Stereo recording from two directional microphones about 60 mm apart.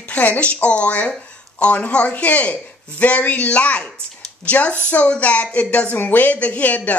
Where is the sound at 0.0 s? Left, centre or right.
Left.